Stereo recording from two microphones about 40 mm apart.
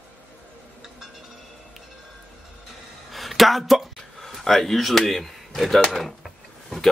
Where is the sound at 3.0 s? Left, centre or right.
Centre.